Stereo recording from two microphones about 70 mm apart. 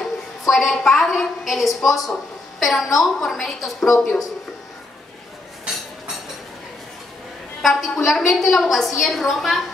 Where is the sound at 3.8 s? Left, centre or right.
Left.